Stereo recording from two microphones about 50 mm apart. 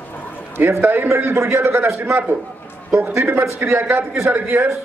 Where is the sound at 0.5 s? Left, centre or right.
Right.